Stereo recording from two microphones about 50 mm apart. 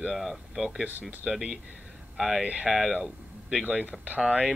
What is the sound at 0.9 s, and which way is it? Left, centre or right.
Speech, right.